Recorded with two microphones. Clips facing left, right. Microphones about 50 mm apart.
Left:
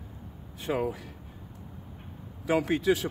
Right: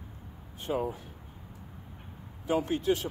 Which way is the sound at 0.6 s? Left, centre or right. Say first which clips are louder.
Left 2 dB; left.